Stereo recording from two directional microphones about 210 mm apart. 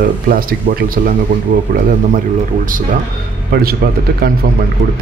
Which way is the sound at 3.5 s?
45° right (ahead or behind).